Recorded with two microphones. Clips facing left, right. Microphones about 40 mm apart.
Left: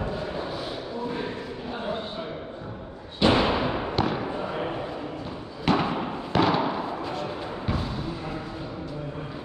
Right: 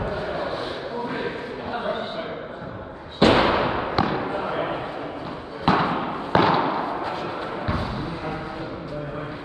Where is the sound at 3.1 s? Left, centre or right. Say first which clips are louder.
Right 4 dB; right.